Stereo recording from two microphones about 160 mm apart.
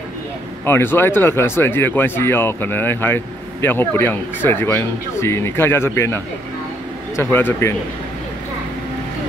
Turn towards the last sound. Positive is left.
turn(degrees=15)  # may be behind; listen again after turning